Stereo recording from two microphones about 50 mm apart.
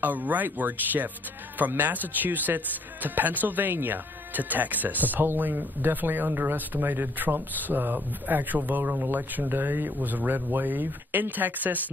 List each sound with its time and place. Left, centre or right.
0.0 s speech: right